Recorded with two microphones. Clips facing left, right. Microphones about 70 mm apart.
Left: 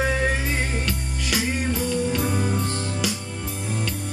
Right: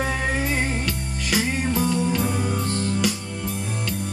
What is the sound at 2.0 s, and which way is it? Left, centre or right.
Music, centre.